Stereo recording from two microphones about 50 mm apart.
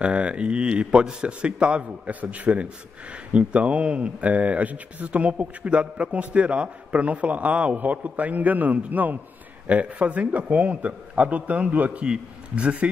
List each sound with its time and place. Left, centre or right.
0.0 s speech: right